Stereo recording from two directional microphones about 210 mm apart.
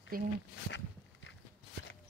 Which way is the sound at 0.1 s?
45° right (ahead or behind).